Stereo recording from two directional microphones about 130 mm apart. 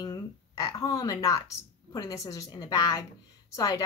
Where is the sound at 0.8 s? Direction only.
25° left (ahead or behind).